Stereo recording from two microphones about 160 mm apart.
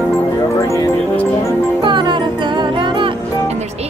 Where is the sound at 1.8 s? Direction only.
30° right (ahead or behind).